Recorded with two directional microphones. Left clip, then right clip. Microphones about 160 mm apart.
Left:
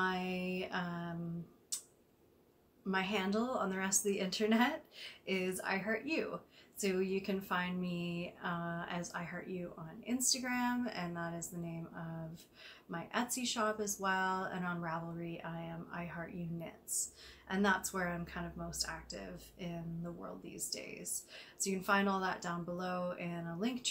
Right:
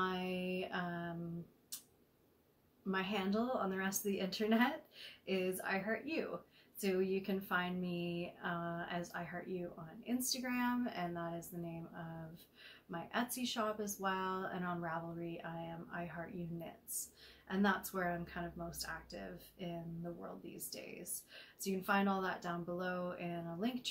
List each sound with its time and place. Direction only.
0.0 s music: 10° left (ahead or behind)
1.7 s tick: 10° left (ahead or behind)
2.9 s speech: 10° left (ahead or behind)
17.5 s speech: 10° left (ahead or behind)